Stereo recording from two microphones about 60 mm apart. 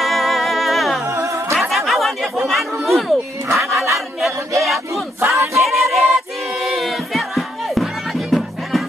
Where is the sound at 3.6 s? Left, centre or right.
Right.